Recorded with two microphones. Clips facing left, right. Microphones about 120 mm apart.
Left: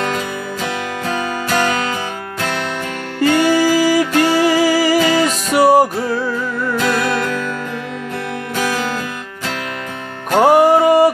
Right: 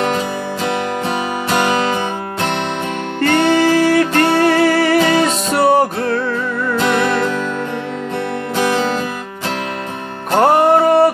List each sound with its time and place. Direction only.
1.0 s music: 20° right (ahead or behind)
3.2 s music: 5° left (ahead or behind)
6.8 s music: 20° right (ahead or behind)
8.5 s music: 20° right (ahead or behind)
10.3 s music: 5° left (ahead or behind)